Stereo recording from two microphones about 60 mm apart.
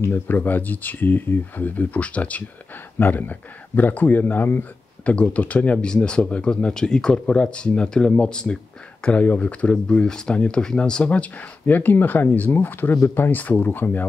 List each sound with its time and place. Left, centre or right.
0.0 s speech: left
5.0 s speech: left
13.4 s speech: left